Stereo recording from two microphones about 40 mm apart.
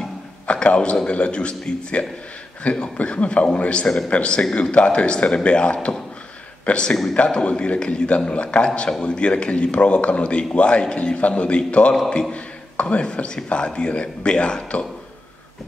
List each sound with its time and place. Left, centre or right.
0.5 s a man's voice: left
1.5 s speech: centre
2.6 s a man's voice: left